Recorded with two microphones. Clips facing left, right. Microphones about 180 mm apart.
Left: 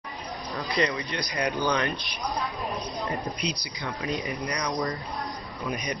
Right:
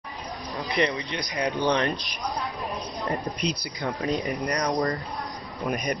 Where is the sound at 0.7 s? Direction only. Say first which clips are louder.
Right 1 dB; 25° right (ahead or behind).